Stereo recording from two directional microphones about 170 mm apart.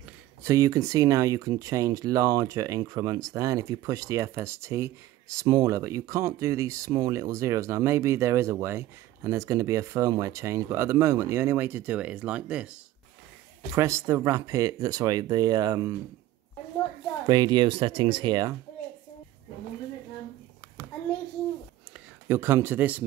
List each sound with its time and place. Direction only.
0.4 s speech: 20° right (ahead or behind)
13.7 s speech: 15° right (ahead or behind)
17.3 s speech: 25° right (ahead or behind)
22.3 s speech: 15° right (ahead or behind)